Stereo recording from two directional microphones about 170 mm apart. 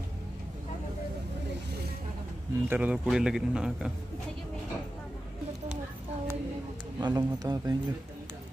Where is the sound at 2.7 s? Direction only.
10° right (ahead or behind).